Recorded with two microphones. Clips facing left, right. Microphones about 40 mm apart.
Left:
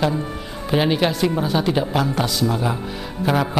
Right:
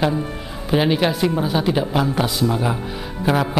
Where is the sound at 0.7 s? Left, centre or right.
Centre.